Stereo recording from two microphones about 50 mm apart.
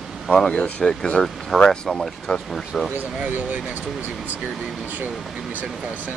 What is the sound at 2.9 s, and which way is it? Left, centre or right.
Speech, right.